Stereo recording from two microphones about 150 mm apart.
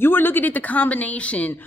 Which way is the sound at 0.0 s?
15° left (ahead or behind).